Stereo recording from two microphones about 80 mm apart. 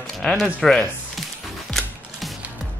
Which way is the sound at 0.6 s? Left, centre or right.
Centre.